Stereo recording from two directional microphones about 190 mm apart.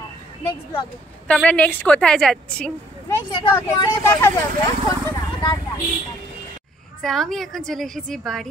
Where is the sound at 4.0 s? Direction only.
15° left (ahead or behind).